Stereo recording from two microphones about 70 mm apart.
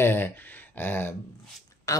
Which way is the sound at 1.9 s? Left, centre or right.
Left.